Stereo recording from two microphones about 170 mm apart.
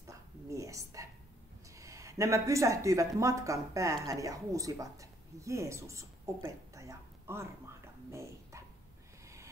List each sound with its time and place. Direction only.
0.0 s a sound: 20° right (ahead or behind)
1.7 s speech: 20° right (ahead or behind)
8.1 s dog: 15° right (ahead or behind)
9.2 s vehicle: 15° right (ahead or behind)